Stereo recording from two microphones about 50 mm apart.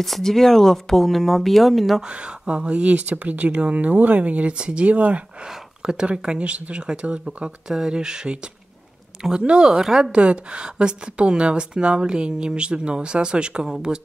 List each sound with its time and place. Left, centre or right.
0.0 s speech: centre
2.0 s a woman's voice: centre
5.8 s a sound: centre
6.0 s a woman's voice: right
10.1 s a woman's voice: right